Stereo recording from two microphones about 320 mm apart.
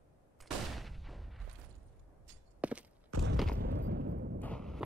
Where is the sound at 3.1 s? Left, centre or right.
Right.